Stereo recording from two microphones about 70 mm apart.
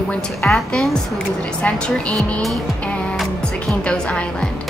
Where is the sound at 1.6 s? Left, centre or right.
Centre.